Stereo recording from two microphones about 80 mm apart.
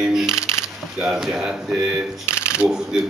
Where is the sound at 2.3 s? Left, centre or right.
Left.